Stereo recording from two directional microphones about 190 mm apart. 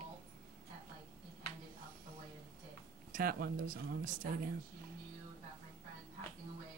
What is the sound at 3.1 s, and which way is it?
Speech, 50° right (ahead or behind).